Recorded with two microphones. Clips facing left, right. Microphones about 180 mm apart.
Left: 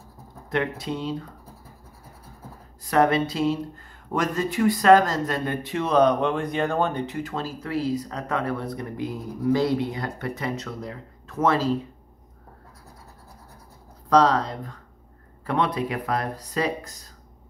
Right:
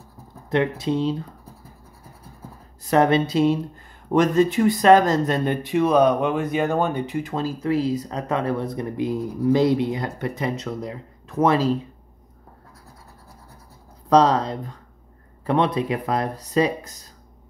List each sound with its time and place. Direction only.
0.5 s speech: 25° right (ahead or behind)
2.9 s speech: 25° right (ahead or behind)
14.0 s speech: 20° right (ahead or behind)